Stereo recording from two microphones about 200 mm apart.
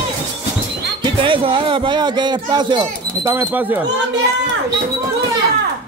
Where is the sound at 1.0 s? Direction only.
25° right (ahead or behind).